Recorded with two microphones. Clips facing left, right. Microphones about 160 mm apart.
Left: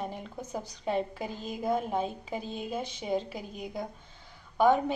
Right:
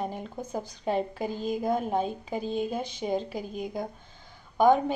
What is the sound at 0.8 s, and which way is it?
Speech, 40° right (ahead or behind).